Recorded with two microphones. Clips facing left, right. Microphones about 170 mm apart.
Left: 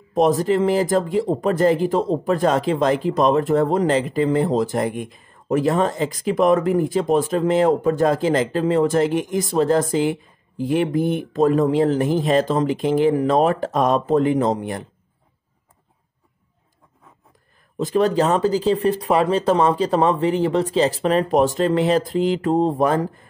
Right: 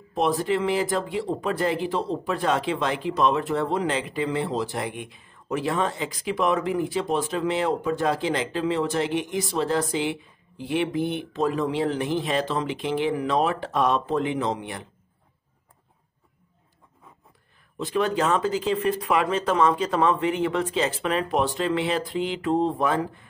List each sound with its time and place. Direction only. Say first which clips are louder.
0.1 s speech: left 6 dB; 40° left (ahead or behind)
17.7 s speech: left 6 dB; 40° left (ahead or behind)